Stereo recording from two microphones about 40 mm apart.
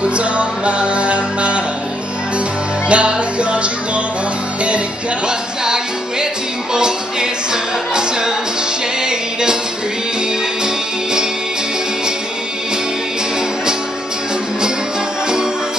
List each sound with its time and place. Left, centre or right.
0.0 s music: right
2.9 s music: right
6.7 s music: centre
9.0 s music: centre